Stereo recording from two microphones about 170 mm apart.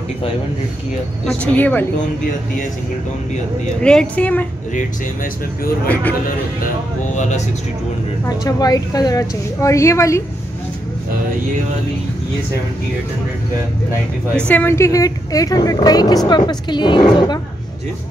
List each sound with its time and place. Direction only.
1.2 s a woman's voice: 10° left (ahead or behind)
3.8 s a woman's voice: 5° left (ahead or behind)
4.7 s speech: 55° left (ahead or behind)
7.0 s speech: 45° left (ahead or behind)
8.5 s a woman's voice: 20° left (ahead or behind)
14.5 s a woman's voice: 10° left (ahead or behind)